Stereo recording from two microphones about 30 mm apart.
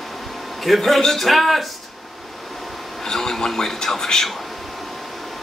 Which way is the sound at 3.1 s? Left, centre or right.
Centre.